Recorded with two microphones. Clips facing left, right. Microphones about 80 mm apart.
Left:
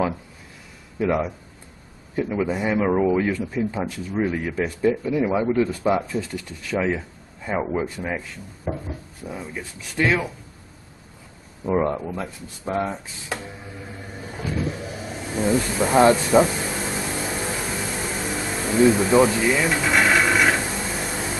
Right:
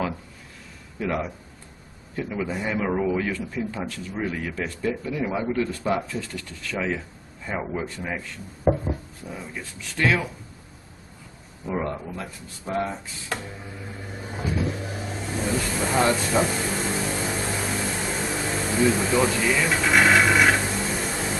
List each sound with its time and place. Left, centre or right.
0.9 s speech: centre
8.7 s a sound: right
9.3 s speech: centre
11.6 s speech: left
13.3 s speech: centre
14.6 s vehicle: centre
15.4 s speech: centre
16.4 s vehicle: centre
18.3 s a sound: centre
19.2 s speech: centre
19.7 s a sound: centre